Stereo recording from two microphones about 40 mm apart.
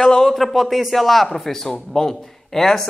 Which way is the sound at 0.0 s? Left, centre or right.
Centre.